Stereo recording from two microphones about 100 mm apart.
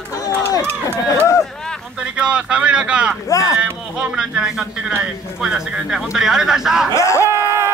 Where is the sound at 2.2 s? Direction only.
10° right (ahead or behind).